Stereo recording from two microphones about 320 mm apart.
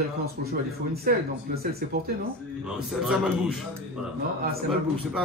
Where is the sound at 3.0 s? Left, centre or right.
Centre.